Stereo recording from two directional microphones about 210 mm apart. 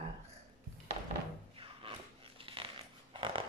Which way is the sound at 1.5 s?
25° right (ahead or behind).